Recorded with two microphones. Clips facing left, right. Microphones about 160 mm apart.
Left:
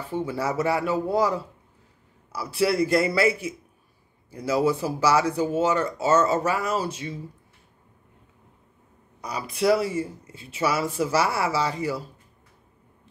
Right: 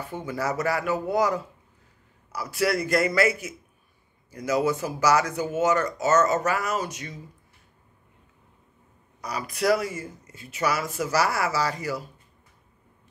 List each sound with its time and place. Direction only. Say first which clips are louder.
0.1 s speech: left 3 dB; 30° left (ahead or behind)
2.5 s a man's voice: left 3 dB; 30° left (ahead or behind)
9.2 s speech: left 2 dB; 30° left (ahead or behind)